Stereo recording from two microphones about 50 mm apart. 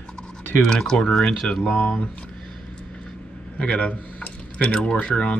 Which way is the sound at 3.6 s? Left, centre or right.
Left.